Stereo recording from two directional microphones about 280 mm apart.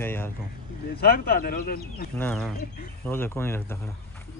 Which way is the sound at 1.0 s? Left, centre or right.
Left.